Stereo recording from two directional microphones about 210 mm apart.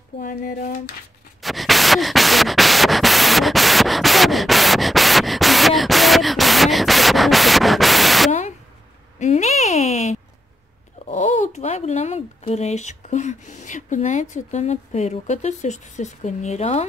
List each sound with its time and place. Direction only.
0.2 s speech: 40° left (ahead or behind)
1.4 s static: centre (ahead or behind)
8.3 s a sound: 35° left (ahead or behind)
11.1 s speech: 35° left (ahead or behind)